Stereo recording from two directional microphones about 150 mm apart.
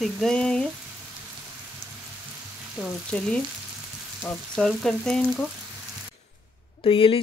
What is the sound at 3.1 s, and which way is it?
Speech, 5° left (ahead or behind).